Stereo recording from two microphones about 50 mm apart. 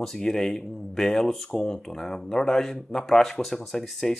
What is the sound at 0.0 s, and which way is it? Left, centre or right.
Speech, centre.